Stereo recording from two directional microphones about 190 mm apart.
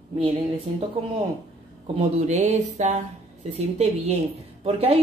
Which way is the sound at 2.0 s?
35° right (ahead or behind).